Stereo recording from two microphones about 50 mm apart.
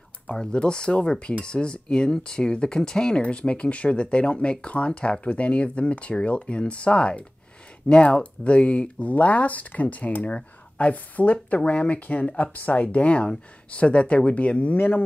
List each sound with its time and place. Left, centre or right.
0.4 s speech: centre; by 15.0 s left